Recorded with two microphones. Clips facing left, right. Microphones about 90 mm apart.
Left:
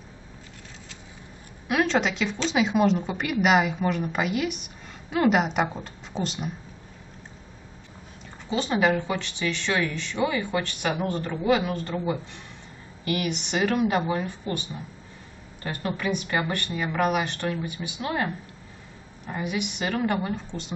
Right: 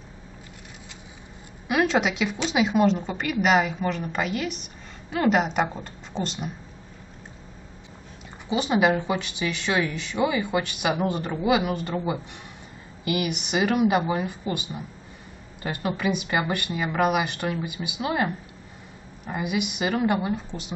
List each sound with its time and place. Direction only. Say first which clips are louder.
1.7 s a woman's voice: right 1 dB; 5° right (ahead or behind)
8.5 s speech: right 2 dB; 10° right (ahead or behind)